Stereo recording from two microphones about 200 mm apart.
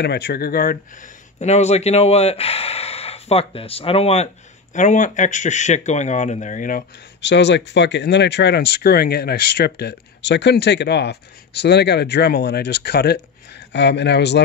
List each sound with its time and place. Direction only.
0.0 s speech: 55° left (ahead or behind)
7.2 s speech: 60° left (ahead or behind)